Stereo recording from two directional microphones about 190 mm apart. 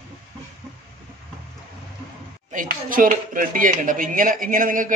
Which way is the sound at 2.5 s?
45° right (ahead or behind).